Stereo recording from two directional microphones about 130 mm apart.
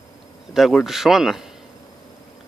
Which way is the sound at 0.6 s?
Centre (ahead or behind).